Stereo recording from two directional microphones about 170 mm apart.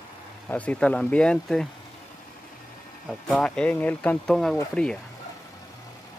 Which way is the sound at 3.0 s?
Centre (ahead or behind).